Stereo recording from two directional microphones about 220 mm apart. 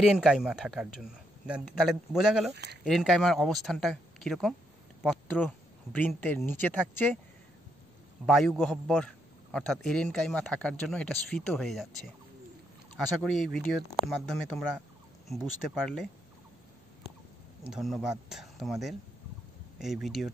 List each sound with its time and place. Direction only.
0.0 s a man's voice: centre (ahead or behind)
2.5 s speech: 50° right (ahead or behind)
2.8 s a man's voice: centre (ahead or behind)
5.9 s speech: 10° left (ahead or behind)
8.3 s a man's voice: centre (ahead or behind)
12.9 s a man's voice: centre (ahead or behind)
15.7 s a man's voice: centre (ahead or behind)
17.6 s a man's voice: centre (ahead or behind)